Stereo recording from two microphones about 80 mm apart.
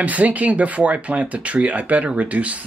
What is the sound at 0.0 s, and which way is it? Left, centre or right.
Speech, centre.